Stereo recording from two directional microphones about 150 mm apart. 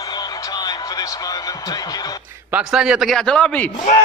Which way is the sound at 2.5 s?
5° right (ahead or behind).